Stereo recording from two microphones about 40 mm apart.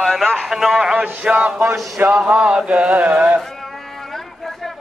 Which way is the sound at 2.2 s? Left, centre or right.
Right.